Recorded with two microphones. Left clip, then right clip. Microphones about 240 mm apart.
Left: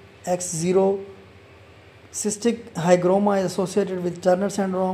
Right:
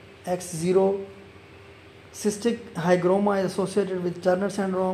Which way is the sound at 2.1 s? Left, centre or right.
Centre.